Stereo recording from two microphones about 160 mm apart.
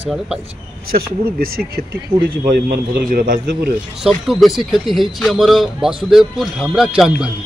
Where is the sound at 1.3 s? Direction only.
70° right (ahead or behind).